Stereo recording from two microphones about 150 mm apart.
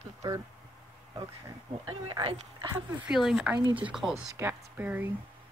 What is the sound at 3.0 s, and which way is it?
Speech, 5° right (ahead or behind).